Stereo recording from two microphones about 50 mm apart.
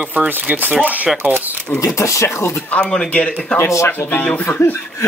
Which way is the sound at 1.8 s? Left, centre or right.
Left.